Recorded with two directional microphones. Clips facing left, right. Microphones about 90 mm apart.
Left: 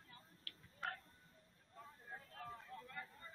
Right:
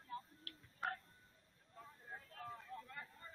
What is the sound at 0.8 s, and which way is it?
Music, 5° right (ahead or behind).